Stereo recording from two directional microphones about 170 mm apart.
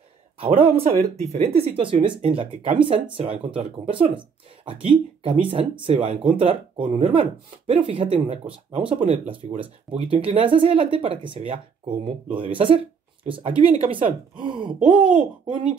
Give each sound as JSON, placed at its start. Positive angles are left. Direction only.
{"t": 0.4, "sound": "speech", "side_deg": -35}